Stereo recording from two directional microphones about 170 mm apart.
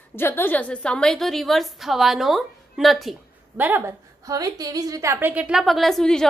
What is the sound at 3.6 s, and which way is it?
A woman's voice, 10° right (ahead or behind).